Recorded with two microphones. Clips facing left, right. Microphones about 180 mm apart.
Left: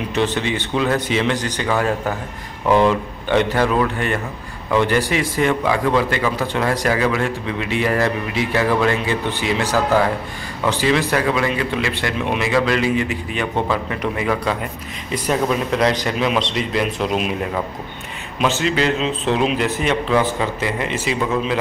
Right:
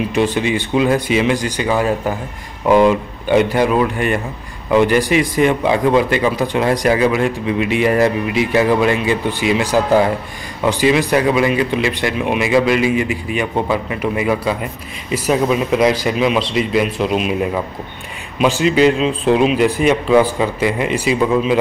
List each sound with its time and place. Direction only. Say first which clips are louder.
0.1 s a man's voice: right 1 dB; 10° right (ahead or behind)
18.4 s a man's voice: right 6 dB; 15° right (ahead or behind)